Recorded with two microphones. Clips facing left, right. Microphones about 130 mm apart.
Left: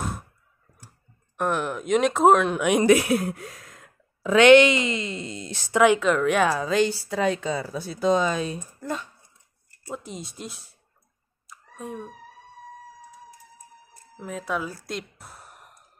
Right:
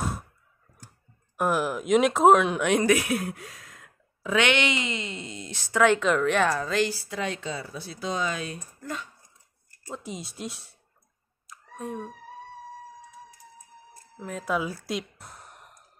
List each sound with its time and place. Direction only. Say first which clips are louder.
1.3 s speech: even; 5° right (ahead or behind)
2.8 s speech: left 5 dB; 30° left (ahead or behind)
5.7 s speech: left 3 dB; 15° left (ahead or behind)
5.9 s speech: left 2 dB; centre (ahead or behind)
7.1 s speech: left 7 dB; 45° left (ahead or behind)
9.8 s speech: left 1 dB; centre (ahead or behind)
11.4 s clicking: right 1 dB; centre (ahead or behind)
14.2 s speech: right 1 dB; centre (ahead or behind)
14.9 s a sound: right 2 dB; centre (ahead or behind)